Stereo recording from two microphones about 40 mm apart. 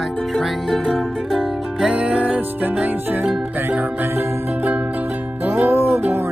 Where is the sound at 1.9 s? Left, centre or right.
Right.